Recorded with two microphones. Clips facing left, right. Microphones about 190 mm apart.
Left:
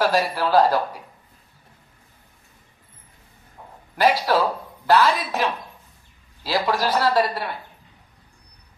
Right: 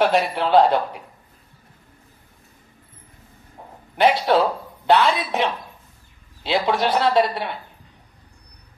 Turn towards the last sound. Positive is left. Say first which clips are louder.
# right 2 dB
turn(degrees=-25)  # may be behind; listen again after turning